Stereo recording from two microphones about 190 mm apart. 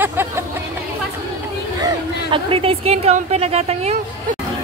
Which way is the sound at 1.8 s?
30° right (ahead or behind).